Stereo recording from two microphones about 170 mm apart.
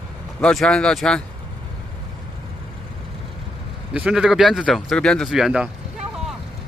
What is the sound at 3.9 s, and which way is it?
Speech, 5° right (ahead or behind).